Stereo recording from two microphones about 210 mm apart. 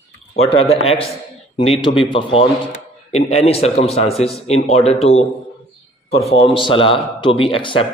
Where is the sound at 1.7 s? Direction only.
25° left (ahead or behind).